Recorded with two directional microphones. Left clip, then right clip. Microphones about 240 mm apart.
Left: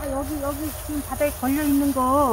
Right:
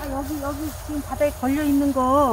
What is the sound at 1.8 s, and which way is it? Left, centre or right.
Speech, centre.